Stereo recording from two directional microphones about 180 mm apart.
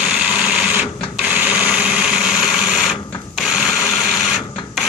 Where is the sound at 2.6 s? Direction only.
Centre (ahead or behind).